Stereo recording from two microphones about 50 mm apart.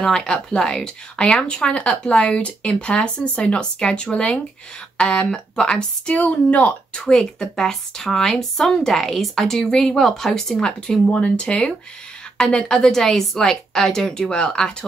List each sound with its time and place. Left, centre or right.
0.0 s a woman's voice: centre
10.5 s a woman's voice: centre